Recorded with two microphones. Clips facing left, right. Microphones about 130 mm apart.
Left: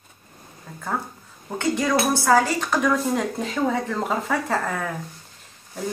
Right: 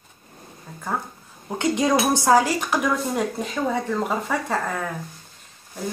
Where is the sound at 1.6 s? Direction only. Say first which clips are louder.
Right 1 dB; 20° right (ahead or behind).